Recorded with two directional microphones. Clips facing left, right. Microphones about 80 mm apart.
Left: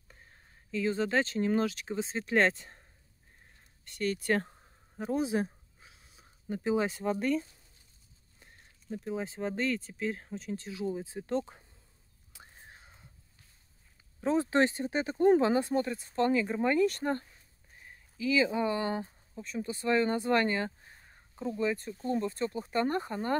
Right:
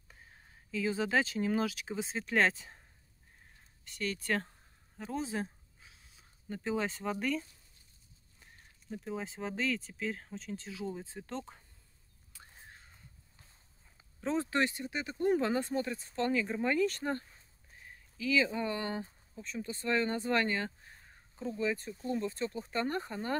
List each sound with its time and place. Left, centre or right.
0.1 s speech: centre
3.8 s speech: centre
5.0 s a sound: centre
8.4 s speech: centre
12.3 s whispering: centre
14.2 s speech: centre
14.5 s speech: left
15.4 s speech: centre